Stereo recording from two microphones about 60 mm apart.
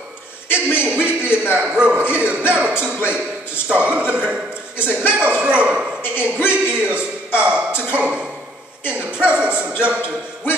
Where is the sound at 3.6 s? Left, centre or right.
Right.